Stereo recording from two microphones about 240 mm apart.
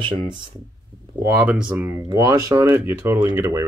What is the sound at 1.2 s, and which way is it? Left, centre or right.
Speech, centre.